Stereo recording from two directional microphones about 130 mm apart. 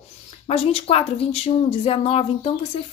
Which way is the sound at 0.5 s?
50° left (ahead or behind).